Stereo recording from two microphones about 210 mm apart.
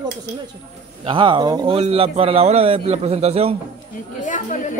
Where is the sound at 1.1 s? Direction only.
20° right (ahead or behind).